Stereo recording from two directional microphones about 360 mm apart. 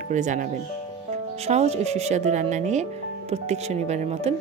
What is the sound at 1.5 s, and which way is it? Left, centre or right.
Speech, centre.